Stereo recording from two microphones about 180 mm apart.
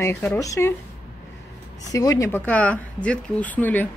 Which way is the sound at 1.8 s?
20° left (ahead or behind).